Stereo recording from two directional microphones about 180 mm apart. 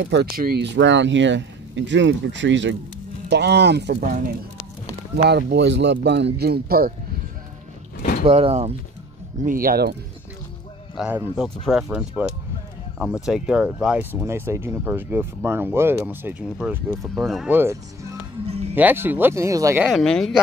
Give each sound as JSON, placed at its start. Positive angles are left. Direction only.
{"t": 0.0, "sound": "speech", "side_deg": -70}
{"t": 3.3, "sound": "speech", "side_deg": -70}
{"t": 8.3, "sound": "speech", "side_deg": -35}
{"t": 9.4, "sound": "speech", "side_deg": -50}
{"t": 11.0, "sound": "speech", "side_deg": -5}
{"t": 18.5, "sound": "music", "side_deg": -35}
{"t": 18.8, "sound": "speech", "side_deg": -10}
{"t": 19.9, "sound": "speech", "side_deg": 0}